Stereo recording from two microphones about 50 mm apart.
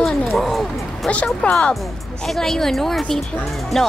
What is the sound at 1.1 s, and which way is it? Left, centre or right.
Speech, left.